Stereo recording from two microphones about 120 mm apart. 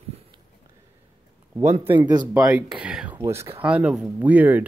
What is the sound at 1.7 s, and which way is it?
Speech, 50° right (ahead or behind).